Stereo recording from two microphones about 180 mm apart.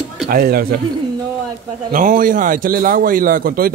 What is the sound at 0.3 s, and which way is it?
Speech, 55° right (ahead or behind).